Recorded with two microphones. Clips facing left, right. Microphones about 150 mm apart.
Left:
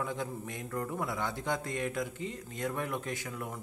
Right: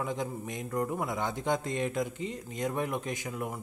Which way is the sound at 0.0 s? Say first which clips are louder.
Right 2 dB; 20° right (ahead or behind).